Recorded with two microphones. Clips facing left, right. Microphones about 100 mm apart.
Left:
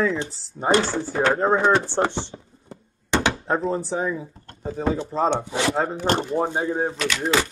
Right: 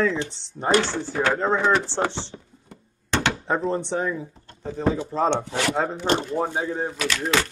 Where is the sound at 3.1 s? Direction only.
10° left (ahead or behind).